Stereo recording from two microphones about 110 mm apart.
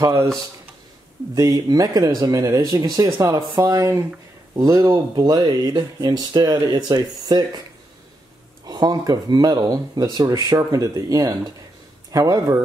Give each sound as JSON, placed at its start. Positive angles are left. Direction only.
{"t": 1.3, "sound": "speech", "side_deg": -35}
{"t": 8.6, "sound": "speech", "side_deg": -35}